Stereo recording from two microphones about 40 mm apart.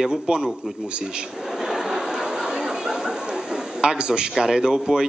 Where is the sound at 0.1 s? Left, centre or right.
Centre.